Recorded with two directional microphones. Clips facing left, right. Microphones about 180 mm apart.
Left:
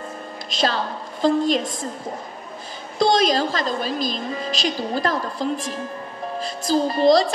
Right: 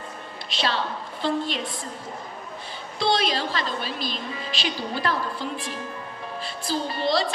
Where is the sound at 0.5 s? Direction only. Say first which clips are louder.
Left 4 dB; 40° left (ahead or behind).